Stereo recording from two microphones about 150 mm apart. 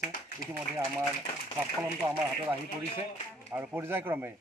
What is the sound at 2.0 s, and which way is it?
Speech, 20° right (ahead or behind).